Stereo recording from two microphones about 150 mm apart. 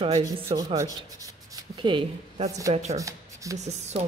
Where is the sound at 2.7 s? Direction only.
45° right (ahead or behind).